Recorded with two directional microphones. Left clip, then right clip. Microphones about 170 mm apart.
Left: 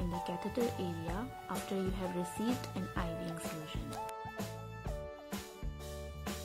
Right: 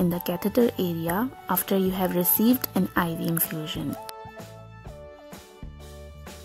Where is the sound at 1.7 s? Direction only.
55° right (ahead or behind).